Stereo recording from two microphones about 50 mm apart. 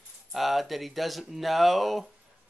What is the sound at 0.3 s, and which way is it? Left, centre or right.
Speech, centre.